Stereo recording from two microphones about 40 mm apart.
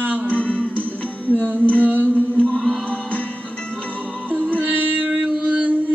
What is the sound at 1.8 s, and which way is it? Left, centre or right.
Music, right.